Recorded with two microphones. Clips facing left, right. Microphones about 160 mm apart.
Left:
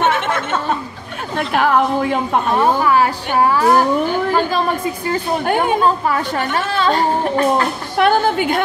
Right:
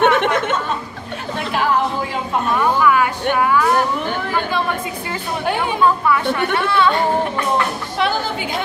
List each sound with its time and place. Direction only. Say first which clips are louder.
1.5 s a sound: left 4 dB; 55° left (ahead or behind)
2.5 s a woman's voice: left 1 dB; 35° left (ahead or behind)
8.0 s a woman's voice: left 7 dB; 55° left (ahead or behind)